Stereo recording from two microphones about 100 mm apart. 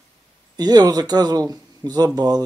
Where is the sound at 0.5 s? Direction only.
40° right (ahead or behind).